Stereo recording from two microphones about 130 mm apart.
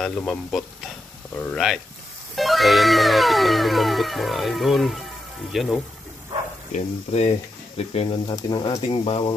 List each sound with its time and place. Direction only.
0.0 s speech: 5° left (ahead or behind)
2.3 s music: centre (ahead or behind)
6.7 s speech: 60° left (ahead or behind)
8.4 s speech: 35° left (ahead or behind)
8.8 s speech: 45° left (ahead or behind)